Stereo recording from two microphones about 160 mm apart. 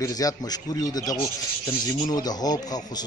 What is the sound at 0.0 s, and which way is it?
A man's voice, 20° left (ahead or behind).